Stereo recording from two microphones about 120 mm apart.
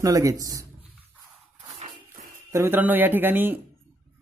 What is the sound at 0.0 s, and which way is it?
Speech, 25° right (ahead or behind).